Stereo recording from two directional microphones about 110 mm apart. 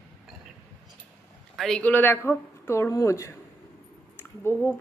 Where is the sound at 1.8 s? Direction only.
20° left (ahead or behind).